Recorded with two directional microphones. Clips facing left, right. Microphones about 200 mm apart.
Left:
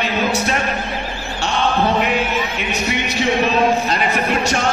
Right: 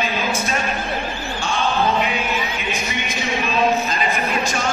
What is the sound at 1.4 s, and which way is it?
Basketball bounce, 70° left (ahead or behind).